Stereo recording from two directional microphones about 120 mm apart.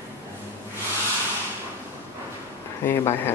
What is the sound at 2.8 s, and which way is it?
Speech, 20° left (ahead or behind).